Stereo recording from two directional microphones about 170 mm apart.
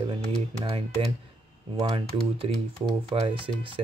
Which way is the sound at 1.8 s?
30° right (ahead or behind).